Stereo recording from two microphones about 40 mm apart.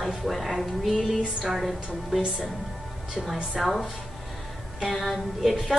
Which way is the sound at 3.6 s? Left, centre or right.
Centre.